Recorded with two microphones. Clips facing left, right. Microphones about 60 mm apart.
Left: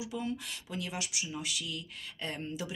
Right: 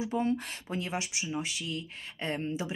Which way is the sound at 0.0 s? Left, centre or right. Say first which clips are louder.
Right 7 dB; right.